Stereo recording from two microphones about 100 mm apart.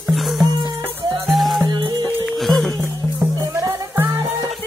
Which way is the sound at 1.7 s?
45° right (ahead or behind).